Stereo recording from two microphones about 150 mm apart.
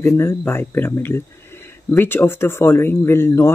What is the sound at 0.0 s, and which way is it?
Speech, 20° left (ahead or behind).